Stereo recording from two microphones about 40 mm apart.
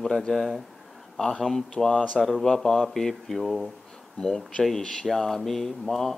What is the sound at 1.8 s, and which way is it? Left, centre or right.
Speech, centre.